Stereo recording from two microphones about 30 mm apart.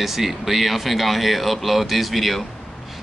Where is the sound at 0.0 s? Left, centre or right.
Centre.